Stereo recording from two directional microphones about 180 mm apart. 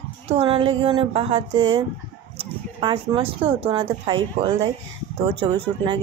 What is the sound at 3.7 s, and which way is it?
Speech, 25° right (ahead or behind).